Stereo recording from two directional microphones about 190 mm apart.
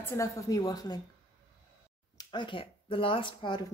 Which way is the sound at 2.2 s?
25° left (ahead or behind).